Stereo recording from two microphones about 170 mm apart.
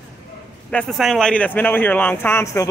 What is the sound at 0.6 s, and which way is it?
Speech, 5° left (ahead or behind).